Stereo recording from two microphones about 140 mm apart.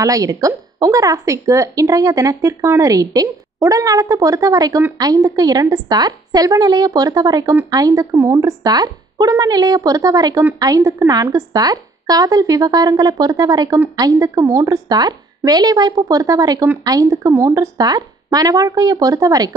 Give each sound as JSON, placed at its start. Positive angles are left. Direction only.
{"t": 0.0, "sound": "a woman's voice", "side_deg": -25}